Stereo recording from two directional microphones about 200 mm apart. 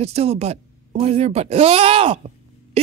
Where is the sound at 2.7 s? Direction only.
30° right (ahead or behind).